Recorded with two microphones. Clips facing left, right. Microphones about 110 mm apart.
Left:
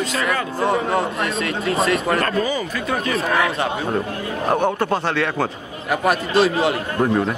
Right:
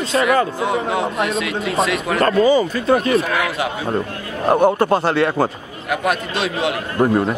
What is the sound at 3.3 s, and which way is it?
Speech, 35° left (ahead or behind).